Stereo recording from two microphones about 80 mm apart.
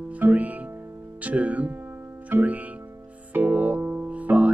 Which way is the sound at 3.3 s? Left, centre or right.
Centre.